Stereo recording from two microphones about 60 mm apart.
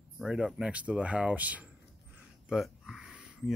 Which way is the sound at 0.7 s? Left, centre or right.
Right.